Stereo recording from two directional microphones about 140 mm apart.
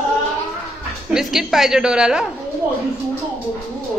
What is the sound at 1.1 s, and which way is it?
A woman's voice, 5° right (ahead or behind).